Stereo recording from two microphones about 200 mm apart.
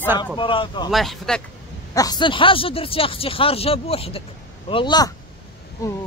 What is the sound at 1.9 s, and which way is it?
Speech, 20° left (ahead or behind).